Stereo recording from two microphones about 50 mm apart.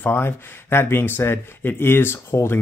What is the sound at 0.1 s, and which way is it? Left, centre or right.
Speech, left.